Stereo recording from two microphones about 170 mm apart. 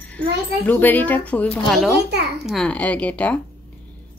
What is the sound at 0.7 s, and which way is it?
Speech, 10° left (ahead or behind).